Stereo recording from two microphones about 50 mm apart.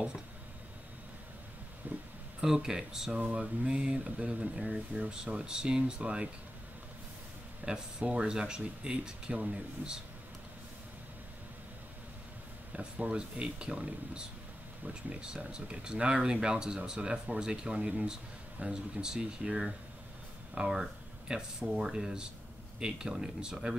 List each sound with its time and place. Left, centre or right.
1.8 s a sound: right
2.4 s speech: centre
7.6 s speech: right
12.7 s speech: right